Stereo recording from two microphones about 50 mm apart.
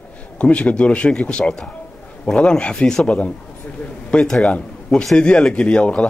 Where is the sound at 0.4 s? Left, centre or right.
Left.